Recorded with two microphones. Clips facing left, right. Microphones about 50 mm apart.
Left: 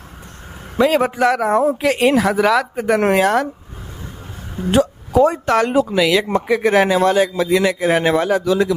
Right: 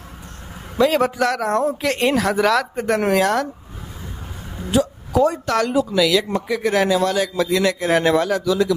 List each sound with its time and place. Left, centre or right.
0.7 s speech: centre
3.1 s a man's voice: left
4.6 s speech: left
5.2 s a man's voice: left